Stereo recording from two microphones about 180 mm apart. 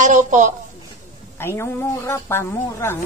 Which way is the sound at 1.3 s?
15° left (ahead or behind).